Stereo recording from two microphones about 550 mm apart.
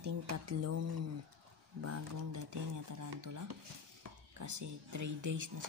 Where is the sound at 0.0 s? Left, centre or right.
Right.